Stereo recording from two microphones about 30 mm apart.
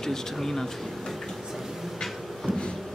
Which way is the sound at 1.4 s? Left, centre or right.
Centre.